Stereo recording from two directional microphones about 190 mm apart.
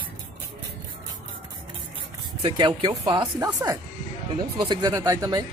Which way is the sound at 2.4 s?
25° right (ahead or behind).